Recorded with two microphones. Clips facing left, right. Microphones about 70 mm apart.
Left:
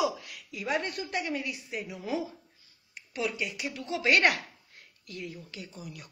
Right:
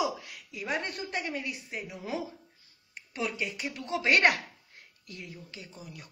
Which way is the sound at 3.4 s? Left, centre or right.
Right.